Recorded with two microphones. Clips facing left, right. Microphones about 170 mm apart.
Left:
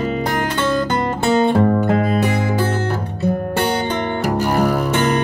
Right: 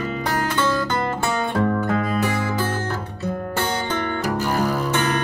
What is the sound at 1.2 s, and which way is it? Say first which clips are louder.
Music: left 9 dB; 30° left (ahead or behind).